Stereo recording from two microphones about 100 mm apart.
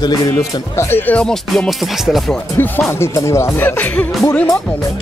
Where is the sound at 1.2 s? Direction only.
5° left (ahead or behind).